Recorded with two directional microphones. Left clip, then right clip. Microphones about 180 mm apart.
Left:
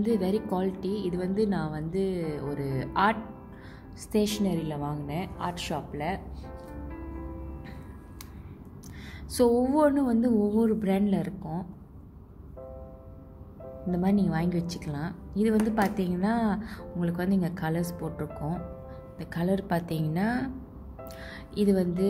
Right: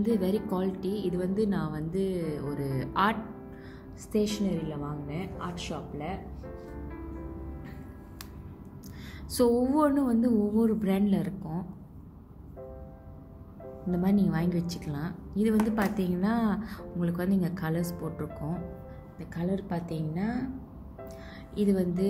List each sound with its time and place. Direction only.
0.0 s speech: 15° left (ahead or behind)
4.1 s a woman's voice: 35° left (ahead or behind)
9.3 s speech: 15° left (ahead or behind)
13.8 s speech: 15° left (ahead or behind)
19.1 s a woman's voice: 35° left (ahead or behind)
21.5 s speech: 25° left (ahead or behind)